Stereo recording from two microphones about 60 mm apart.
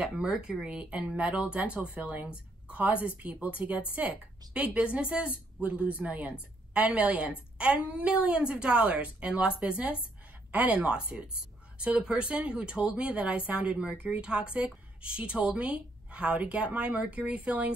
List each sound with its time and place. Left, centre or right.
0.0 s a woman's voice: centre